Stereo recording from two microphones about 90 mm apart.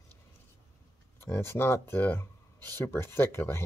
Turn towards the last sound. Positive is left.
turn(degrees=25)  # may be behind; listen again after turning